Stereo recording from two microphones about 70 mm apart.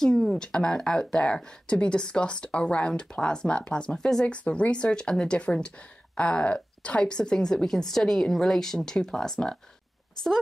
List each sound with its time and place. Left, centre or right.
0.0 s a woman's voice: centre